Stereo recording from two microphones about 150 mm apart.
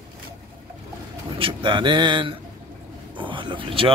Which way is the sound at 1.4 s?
30° right (ahead or behind).